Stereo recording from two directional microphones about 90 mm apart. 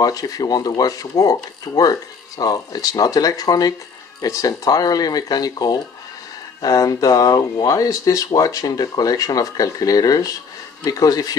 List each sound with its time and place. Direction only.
0.0 s speech: 45° left (ahead or behind)